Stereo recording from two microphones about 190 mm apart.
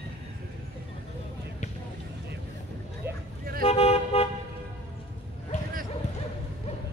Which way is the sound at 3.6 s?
30° left (ahead or behind).